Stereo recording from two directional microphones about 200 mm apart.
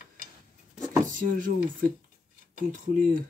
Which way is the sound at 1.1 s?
40° right (ahead or behind).